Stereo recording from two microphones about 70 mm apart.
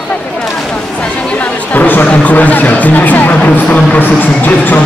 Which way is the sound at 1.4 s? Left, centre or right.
Left.